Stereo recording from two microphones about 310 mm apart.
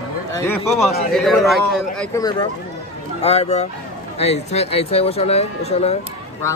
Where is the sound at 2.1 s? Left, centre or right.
Centre.